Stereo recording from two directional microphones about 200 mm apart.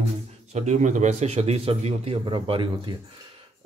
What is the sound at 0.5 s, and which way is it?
A man's voice, 35° right (ahead or behind).